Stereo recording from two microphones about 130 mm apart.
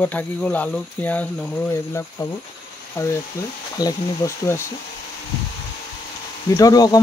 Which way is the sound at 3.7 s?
25° left (ahead or behind).